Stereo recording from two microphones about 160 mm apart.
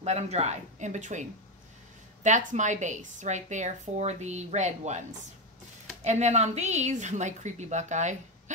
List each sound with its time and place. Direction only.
0.0 s a woman's voice: 40° right (ahead or behind)
2.2 s a woman's voice: 50° right (ahead or behind)
6.0 s a woman's voice: 45° right (ahead or behind)